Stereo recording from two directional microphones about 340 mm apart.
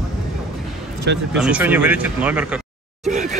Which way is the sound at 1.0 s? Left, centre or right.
Right.